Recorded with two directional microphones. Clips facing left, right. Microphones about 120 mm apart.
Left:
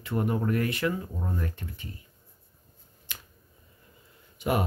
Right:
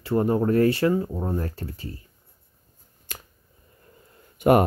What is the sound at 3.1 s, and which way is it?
Finger snapping, 45° right (ahead or behind).